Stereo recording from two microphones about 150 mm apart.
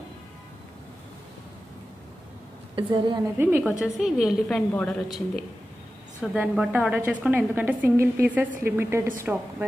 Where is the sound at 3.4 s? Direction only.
15° right (ahead or behind).